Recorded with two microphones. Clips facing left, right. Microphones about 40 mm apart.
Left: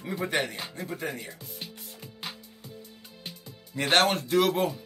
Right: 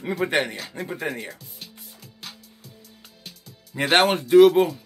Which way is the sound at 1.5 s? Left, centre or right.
Left.